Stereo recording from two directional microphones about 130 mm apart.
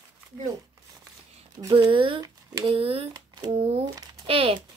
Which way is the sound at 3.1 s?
30° right (ahead or behind).